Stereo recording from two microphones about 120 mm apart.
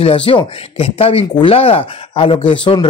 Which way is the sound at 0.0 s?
50° left (ahead or behind).